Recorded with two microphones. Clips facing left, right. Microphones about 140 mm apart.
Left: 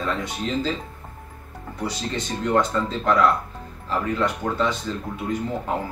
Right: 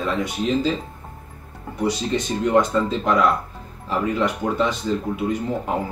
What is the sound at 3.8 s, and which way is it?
Speech, 15° right (ahead or behind).